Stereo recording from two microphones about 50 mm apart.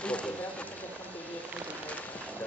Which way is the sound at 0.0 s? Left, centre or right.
Left.